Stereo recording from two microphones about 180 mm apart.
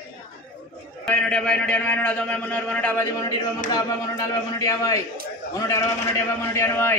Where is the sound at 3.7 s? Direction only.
20° left (ahead or behind).